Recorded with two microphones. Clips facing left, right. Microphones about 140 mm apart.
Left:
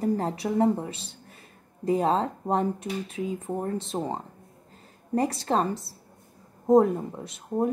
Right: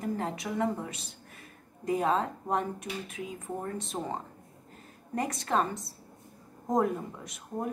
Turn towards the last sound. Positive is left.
turn(degrees=30)  # may be behind; listen again after turning